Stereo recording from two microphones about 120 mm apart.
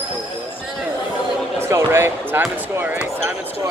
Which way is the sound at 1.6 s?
20° right (ahead or behind).